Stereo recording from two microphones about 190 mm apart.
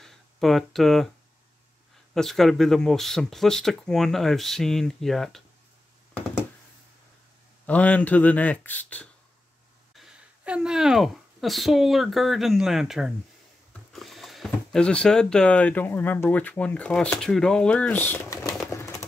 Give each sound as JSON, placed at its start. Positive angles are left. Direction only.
{"t": 0.0, "sound": "speech", "side_deg": 0}
{"t": 2.1, "sound": "speech", "side_deg": 0}
{"t": 7.6, "sound": "speech", "side_deg": 5}
{"t": 9.9, "sound": "a woman's voice", "side_deg": -5}
{"t": 18.7, "sound": "a sound", "side_deg": 15}